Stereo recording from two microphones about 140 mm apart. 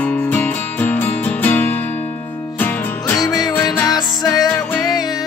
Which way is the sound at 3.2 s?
25° left (ahead or behind).